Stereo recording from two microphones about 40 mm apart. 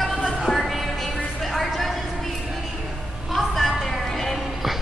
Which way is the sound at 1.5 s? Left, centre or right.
Centre.